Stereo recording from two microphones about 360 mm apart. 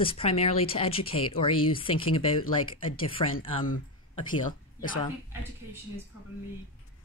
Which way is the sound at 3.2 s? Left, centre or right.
Centre.